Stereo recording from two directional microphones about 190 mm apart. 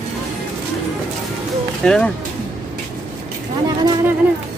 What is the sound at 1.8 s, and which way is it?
Speech, 5° left (ahead or behind).